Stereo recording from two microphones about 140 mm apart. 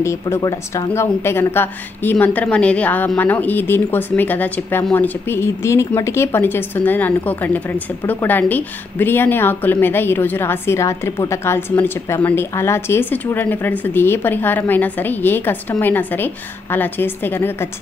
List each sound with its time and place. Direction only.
0.0 s a woman's voice: 20° left (ahead or behind)